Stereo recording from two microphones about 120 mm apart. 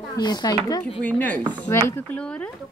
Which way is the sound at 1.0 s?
15° left (ahead or behind).